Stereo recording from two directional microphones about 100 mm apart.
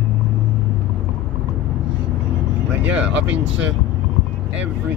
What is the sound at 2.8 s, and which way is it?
Speech, 15° right (ahead or behind).